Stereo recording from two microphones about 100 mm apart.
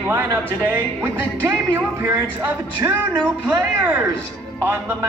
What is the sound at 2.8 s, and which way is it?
Music, 50° right (ahead or behind).